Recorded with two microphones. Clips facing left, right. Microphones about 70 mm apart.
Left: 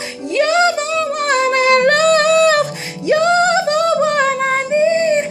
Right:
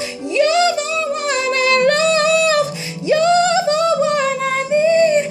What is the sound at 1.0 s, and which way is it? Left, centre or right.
Humming, left.